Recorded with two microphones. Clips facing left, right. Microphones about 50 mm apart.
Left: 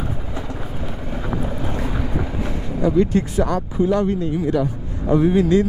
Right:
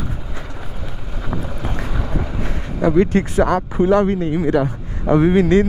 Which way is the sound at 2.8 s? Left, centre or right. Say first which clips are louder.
Right 2 dB; right.